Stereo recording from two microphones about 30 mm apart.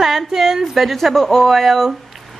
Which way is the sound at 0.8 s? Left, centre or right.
Centre.